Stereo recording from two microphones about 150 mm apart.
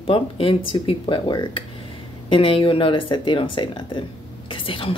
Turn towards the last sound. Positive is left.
turn(degrees=35)  # may be behind; listen again after turning